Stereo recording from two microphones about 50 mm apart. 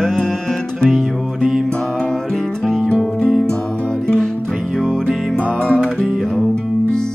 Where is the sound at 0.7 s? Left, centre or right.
Centre.